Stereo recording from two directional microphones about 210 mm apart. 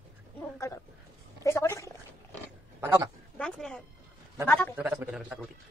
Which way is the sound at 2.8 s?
15° right (ahead or behind).